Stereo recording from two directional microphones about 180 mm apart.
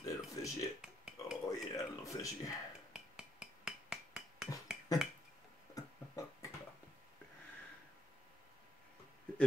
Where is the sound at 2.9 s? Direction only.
5° right (ahead or behind).